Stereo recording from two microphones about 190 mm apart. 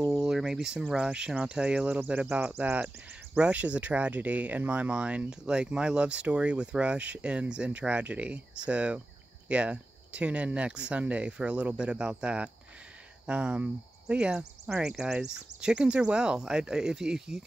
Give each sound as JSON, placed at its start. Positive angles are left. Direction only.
{"t": 0.2, "sound": "speech", "side_deg": 0}